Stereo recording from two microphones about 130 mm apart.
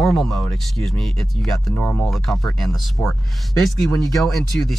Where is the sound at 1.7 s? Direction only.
15° left (ahead or behind).